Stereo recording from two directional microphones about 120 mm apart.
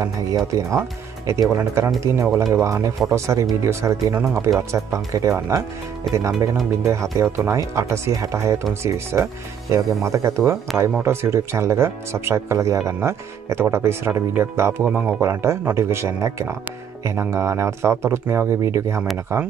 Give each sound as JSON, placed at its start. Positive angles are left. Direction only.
{"t": 0.5, "sound": "speech", "side_deg": -25}